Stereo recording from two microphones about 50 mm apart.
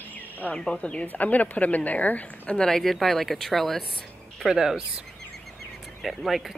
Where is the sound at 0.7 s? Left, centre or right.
Left.